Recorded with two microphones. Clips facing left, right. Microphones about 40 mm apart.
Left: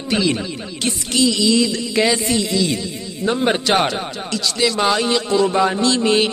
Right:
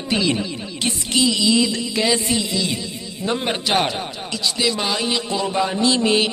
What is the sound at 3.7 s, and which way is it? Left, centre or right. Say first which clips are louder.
Mantra: left 2 dB; centre.